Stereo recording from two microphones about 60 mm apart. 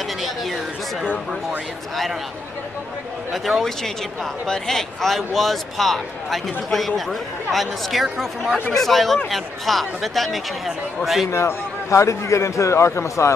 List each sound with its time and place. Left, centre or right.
0.2 s speech: centre
3.4 s speech: centre
11.2 s a man's voice: left